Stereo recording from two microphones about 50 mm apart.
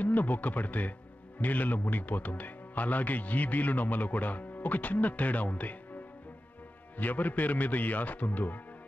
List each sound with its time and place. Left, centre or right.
0.0 s speech: left
7.0 s speech: left